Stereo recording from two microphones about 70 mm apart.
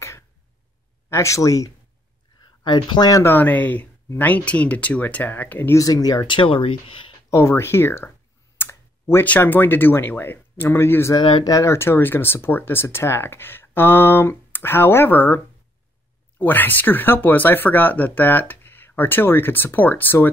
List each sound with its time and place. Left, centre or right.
1.1 s speech: left
2.7 s speech: left
3.3 s speech: left
5.8 s speech: left
7.2 s speech: left
8.5 s clicking: left
9.2 s speech: left
11.1 s speech: left
11.6 s speech: left